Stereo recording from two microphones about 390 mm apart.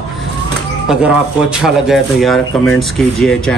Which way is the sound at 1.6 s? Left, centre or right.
Centre.